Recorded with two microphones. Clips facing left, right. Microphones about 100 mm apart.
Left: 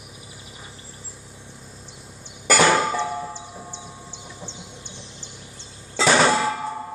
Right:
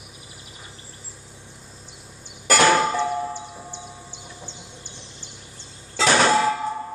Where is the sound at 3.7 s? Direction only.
25° left (ahead or behind).